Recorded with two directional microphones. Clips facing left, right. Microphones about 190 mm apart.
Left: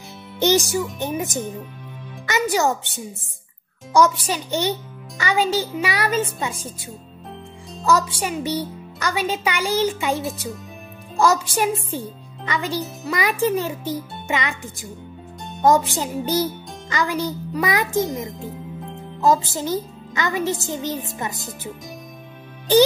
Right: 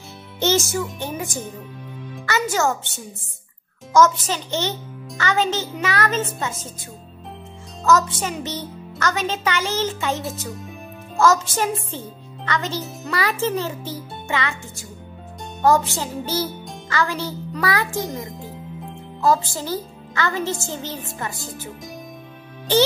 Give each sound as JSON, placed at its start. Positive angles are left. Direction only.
{"t": 0.4, "sound": "a child's voice", "side_deg": 15}
{"t": 3.9, "sound": "a child's voice", "side_deg": 15}
{"t": 7.8, "sound": "a child's voice", "side_deg": 10}
{"t": 19.2, "sound": "a child's voice", "side_deg": 20}